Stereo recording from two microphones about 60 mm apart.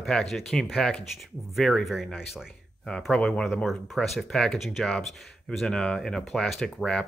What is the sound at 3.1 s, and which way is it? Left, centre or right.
Speech, centre.